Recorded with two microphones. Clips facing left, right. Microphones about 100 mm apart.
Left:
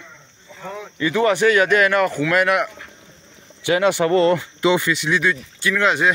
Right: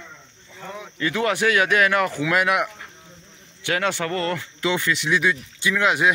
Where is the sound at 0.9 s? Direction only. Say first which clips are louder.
Left 5 dB; 5° left (ahead or behind).